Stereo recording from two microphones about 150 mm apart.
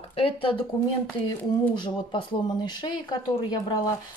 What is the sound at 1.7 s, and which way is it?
Speech, 30° left (ahead or behind).